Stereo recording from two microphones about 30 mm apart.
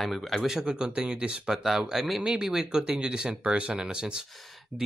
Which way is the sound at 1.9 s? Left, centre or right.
Centre.